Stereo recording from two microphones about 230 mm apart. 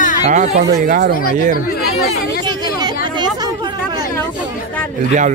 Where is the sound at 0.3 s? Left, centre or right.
Right.